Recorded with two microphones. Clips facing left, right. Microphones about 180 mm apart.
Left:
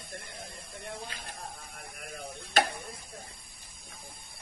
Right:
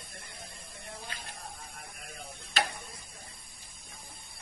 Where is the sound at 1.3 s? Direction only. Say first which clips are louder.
Left 2 dB; 65° left (ahead or behind).